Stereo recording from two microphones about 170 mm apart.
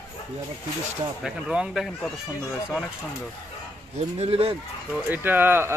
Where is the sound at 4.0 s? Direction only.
35° right (ahead or behind).